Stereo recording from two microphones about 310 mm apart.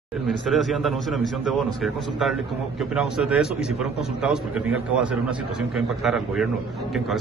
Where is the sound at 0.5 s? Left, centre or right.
Centre.